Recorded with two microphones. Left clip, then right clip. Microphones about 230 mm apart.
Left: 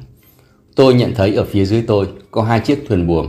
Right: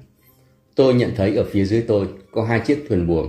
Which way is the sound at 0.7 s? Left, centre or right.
Centre.